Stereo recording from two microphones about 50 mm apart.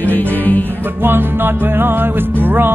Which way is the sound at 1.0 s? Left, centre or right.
Right.